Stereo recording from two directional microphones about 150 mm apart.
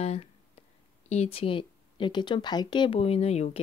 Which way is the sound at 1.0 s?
45° left (ahead or behind).